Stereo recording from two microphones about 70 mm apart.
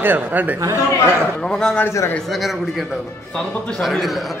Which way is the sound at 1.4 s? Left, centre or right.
Centre.